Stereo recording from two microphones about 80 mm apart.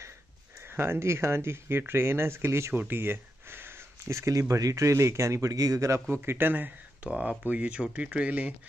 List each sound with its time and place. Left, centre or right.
0.7 s speech: right
6.2 s speech: right